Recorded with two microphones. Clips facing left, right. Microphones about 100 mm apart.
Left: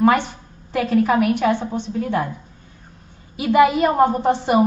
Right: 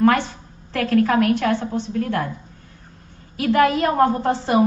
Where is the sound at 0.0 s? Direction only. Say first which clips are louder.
Left 1 dB; 15° left (ahead or behind).